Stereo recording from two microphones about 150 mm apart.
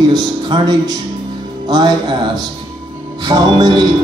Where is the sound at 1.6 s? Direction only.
30° right (ahead or behind).